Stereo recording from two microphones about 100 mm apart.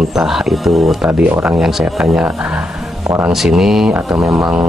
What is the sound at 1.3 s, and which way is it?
Speech, 25° right (ahead or behind).